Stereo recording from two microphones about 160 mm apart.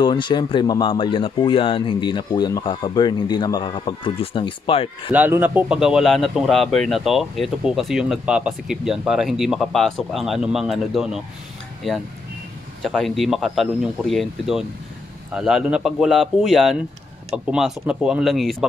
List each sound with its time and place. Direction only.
0.0 s speech: 30° left (ahead or behind)
5.1 s speech: 10° right (ahead or behind)